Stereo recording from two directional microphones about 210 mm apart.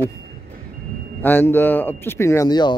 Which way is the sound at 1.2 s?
10° left (ahead or behind).